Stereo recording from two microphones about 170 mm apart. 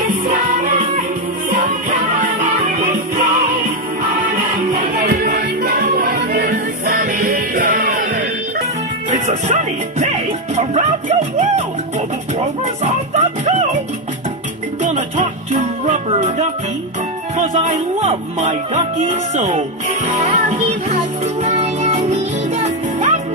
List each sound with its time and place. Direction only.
0.3 s music: 55° right (ahead or behind)
4.7 s music: 50° right (ahead or behind)
14.8 s music: 40° right (ahead or behind)